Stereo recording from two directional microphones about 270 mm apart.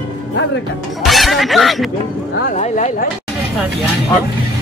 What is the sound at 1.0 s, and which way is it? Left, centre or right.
Speech, centre.